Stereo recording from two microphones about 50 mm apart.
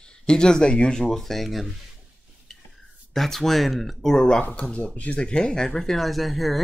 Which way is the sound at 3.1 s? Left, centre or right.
Centre.